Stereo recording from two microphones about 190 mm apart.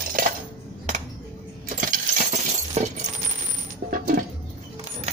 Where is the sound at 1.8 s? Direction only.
45° right (ahead or behind).